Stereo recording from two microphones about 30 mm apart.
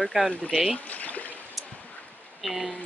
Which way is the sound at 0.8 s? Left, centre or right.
Left.